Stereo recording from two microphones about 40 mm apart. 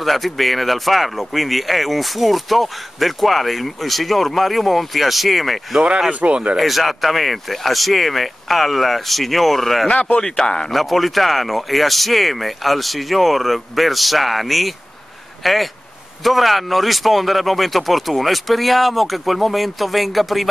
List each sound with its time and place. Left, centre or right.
0.0 s speech: centre
6.0 s speech: right
6.5 s speech: centre
10.1 s speech: centre
10.7 s speech: centre